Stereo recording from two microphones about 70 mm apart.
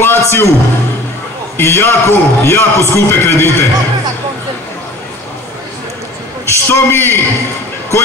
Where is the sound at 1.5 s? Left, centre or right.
Left.